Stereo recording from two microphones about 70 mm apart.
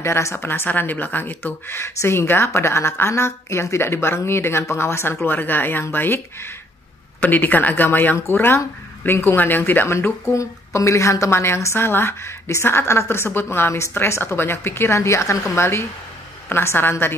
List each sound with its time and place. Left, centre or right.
0.0 s speech: left
10.3 s speech: left